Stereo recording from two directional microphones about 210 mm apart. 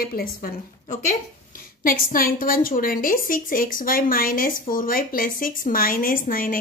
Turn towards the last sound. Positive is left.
turn(degrees=40)  # may be behind; listen again after turning